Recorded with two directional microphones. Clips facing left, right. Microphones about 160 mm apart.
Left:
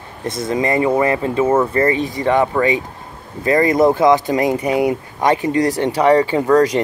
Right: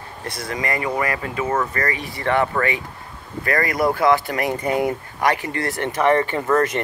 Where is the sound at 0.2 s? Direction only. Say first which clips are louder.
Left 8 dB; 20° left (ahead or behind).